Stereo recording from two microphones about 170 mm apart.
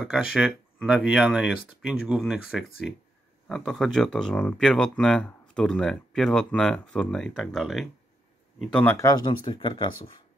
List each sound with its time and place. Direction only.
0.0 s speech: 5° right (ahead or behind)
8.9 s speech: 20° left (ahead or behind)